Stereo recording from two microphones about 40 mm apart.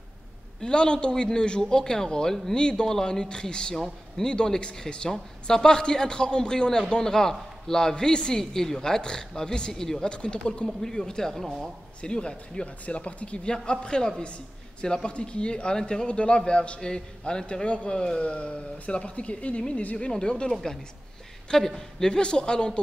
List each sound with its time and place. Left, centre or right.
0.6 s a man's voice: left
10.0 s a man's voice: left; by 11.7 s centre
12.0 s a man's voice: left
20.1 s a man's voice: left